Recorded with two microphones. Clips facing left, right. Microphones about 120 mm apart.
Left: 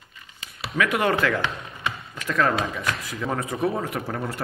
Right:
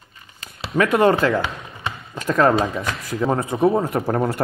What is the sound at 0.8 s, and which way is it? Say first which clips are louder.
Speech: right 6 dB; 35° right (ahead or behind).